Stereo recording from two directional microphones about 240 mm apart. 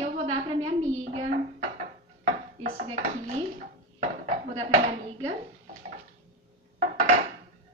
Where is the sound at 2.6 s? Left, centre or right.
Right.